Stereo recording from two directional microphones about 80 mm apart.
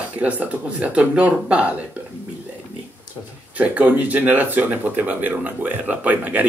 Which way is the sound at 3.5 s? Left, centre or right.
Centre.